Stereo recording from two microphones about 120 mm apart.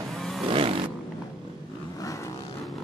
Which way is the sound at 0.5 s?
50° right (ahead or behind).